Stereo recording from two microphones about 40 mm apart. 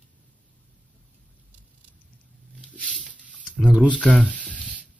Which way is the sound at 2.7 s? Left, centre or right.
Left.